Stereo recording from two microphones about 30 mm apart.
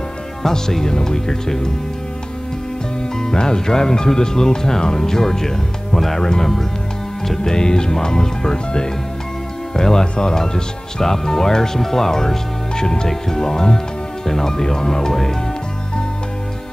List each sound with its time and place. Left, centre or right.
0.4 s speech: centre
3.2 s speech: left
6.2 s speech: centre